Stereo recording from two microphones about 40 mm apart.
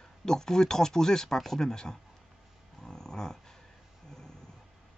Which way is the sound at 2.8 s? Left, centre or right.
Centre.